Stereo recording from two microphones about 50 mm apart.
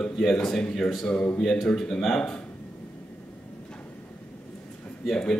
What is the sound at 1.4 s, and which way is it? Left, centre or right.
A man's voice, centre.